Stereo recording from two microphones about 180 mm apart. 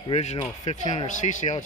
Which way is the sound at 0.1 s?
40° left (ahead or behind).